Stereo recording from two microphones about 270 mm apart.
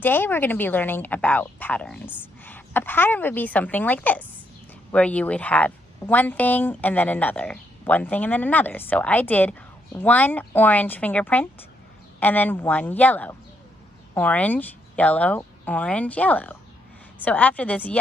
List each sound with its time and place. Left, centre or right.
0.0 s a woman's voice: centre